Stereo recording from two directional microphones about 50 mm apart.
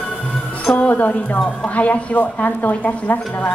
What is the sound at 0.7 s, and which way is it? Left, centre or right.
Speech, left.